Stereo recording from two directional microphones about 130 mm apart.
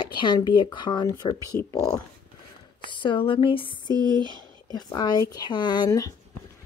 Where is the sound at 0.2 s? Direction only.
40° left (ahead or behind).